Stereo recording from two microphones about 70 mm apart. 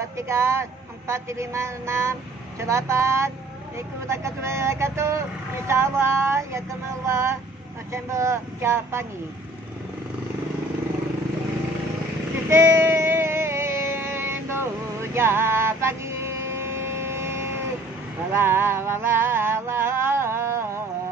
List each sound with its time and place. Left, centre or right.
0.0 s a woman's voice: right
12.4 s music: right
18.3 s a sound: right